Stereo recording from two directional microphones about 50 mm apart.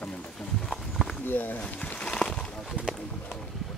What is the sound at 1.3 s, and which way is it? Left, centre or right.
Speech, left.